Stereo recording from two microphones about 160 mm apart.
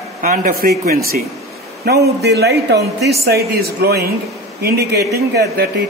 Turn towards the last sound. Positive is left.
turn(degrees=-80)